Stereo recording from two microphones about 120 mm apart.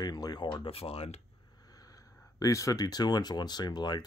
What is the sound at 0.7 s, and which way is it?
Speech, 55° left (ahead or behind).